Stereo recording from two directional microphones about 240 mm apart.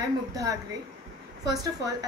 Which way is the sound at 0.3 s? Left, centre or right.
Centre.